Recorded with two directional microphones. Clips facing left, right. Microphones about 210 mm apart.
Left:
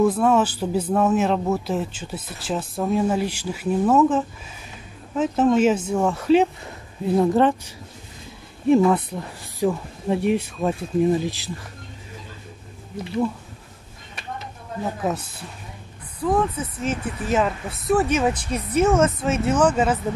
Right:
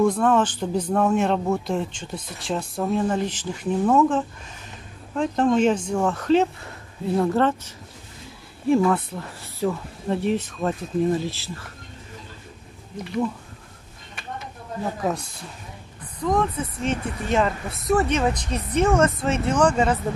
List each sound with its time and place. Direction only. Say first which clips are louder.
0.0 s speech: left 1 dB; 5° left (ahead or behind)
14.8 s speech: left 1 dB; 5° left (ahead or behind)